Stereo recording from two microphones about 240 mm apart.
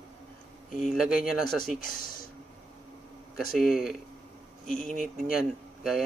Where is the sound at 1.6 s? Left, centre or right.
Left.